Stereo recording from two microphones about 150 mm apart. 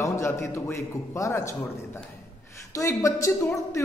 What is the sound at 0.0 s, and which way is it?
Speech, 20° left (ahead or behind).